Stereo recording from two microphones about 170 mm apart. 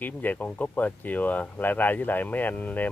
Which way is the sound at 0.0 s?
10° left (ahead or behind).